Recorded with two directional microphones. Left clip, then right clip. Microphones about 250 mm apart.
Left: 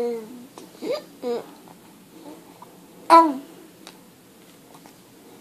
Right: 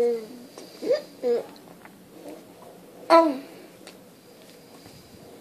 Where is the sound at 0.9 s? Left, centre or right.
Centre.